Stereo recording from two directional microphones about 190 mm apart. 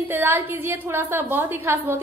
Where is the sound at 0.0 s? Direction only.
10° right (ahead or behind).